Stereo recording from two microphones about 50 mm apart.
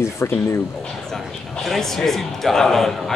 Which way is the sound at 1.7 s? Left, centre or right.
Centre.